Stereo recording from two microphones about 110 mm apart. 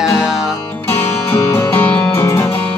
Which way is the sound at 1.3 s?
25° left (ahead or behind).